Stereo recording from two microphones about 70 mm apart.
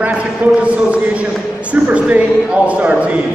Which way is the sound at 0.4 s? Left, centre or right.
Right.